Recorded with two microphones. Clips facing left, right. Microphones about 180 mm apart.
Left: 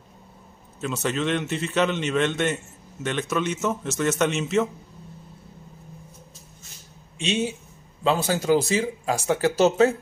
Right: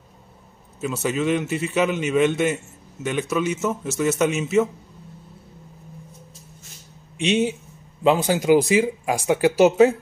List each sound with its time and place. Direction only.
0.7 s a man's voice: 5° right (ahead or behind)
7.2 s a man's voice: 15° right (ahead or behind)